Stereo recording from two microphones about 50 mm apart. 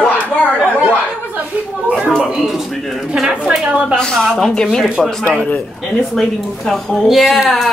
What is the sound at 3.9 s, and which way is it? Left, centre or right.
Speech, centre.